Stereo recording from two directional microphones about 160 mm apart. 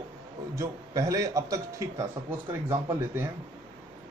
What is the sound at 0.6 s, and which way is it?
Speech, 20° right (ahead or behind).